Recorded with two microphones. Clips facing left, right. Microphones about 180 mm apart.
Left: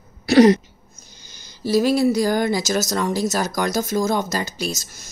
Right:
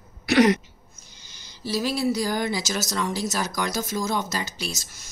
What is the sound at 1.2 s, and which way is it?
Speech, 45° left (ahead or behind).